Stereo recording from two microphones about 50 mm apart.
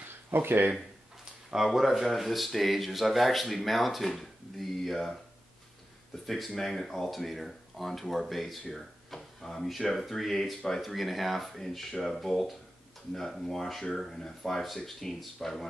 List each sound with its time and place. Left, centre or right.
0.1 s a sound: right
1.5 s speech: centre
6.2 s speech: centre